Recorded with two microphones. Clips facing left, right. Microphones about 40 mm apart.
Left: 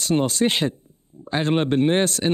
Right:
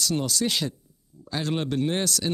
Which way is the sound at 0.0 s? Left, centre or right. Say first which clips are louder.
Left 6 dB; left.